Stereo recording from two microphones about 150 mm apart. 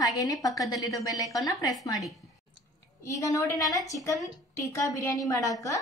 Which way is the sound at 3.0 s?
20° left (ahead or behind).